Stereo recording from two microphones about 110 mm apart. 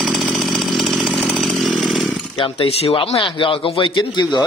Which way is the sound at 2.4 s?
60° left (ahead or behind).